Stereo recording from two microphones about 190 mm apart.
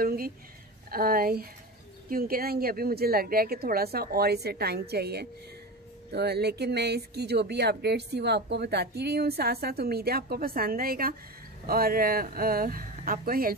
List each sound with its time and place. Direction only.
0.0 s speech: 50° right (ahead or behind)